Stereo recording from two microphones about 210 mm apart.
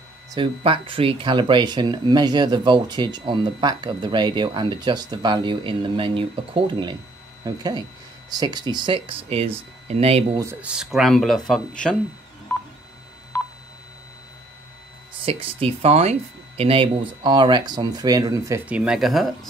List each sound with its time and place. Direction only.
0.3 s speech: 25° right (ahead or behind)
10.4 s speech: 10° right (ahead or behind)
13.3 s telephone dialing: 10° left (ahead or behind)
15.2 s speech: 30° right (ahead or behind)
18.8 s speech: centre (ahead or behind)